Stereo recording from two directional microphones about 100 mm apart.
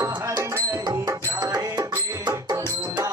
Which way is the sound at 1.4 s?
40° right (ahead or behind).